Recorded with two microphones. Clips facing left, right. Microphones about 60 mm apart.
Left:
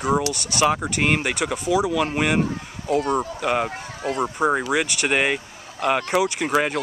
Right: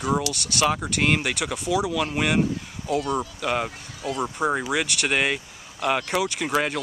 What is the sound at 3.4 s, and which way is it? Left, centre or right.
Speech, centre.